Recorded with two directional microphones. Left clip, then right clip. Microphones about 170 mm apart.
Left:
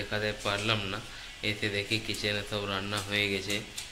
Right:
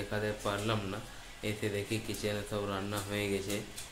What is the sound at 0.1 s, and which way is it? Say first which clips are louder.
A man's voice: left 4 dB; 10° right (ahead or behind).